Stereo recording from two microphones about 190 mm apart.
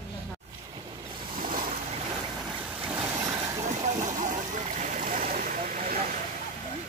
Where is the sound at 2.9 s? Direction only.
15° right (ahead or behind).